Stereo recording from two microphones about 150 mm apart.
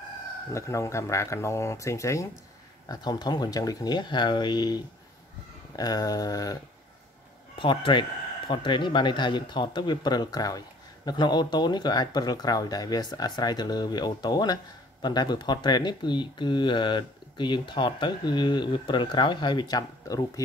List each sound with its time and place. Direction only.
0.5 s speech: 20° left (ahead or behind)